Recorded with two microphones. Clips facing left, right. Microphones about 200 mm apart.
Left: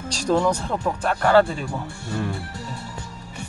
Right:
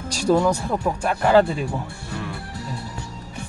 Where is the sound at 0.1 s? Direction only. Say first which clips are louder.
Right 2 dB; 10° right (ahead or behind).